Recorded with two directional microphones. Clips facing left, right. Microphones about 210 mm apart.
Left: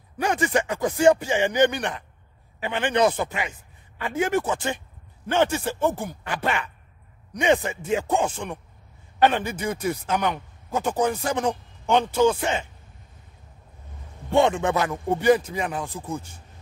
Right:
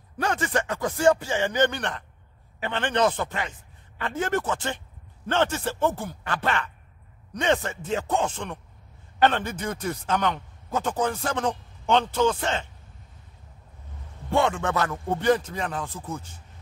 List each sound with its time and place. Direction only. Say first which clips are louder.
0.2 s speech: left 3 dB; 15° left (ahead or behind)
14.3 s speech: left 4 dB; 20° left (ahead or behind)